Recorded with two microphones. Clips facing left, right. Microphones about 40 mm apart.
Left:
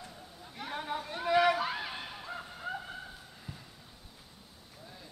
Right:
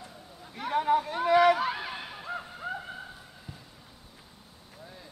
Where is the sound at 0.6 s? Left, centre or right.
Right.